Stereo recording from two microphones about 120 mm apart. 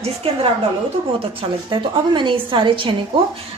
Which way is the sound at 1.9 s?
45° right (ahead or behind).